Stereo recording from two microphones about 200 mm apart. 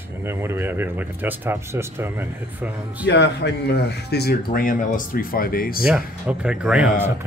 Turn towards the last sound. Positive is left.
turn(degrees=-5)  # may be behind; listen again after turning